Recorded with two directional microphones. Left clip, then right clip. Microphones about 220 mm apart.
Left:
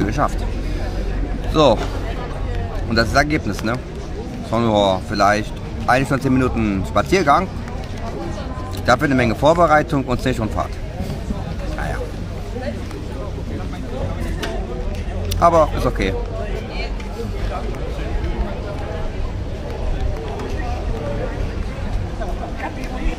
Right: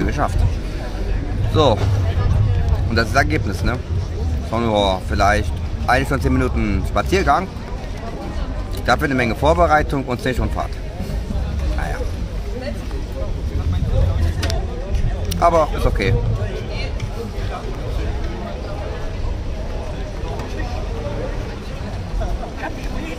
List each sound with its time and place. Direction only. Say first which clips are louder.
0.0 s music: left 2 dB; 5° left (ahead or behind)
1.5 s speech: left 2 dB; 5° left (ahead or behind)
2.9 s speech: left 1 dB; 5° left (ahead or behind)
8.8 s speech: left 2 dB; 5° left (ahead or behind)
15.3 s speech: left 2 dB; 5° left (ahead or behind)